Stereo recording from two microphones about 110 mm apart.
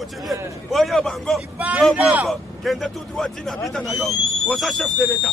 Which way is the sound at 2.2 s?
Centre (ahead or behind).